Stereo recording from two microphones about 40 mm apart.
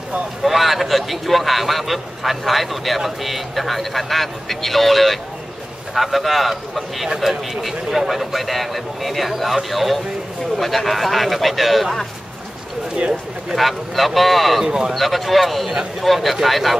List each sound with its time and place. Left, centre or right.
0.4 s speech: centre
8.1 s speech: centre
13.6 s speech: centre
14.7 s speech: centre
15.0 s speech: centre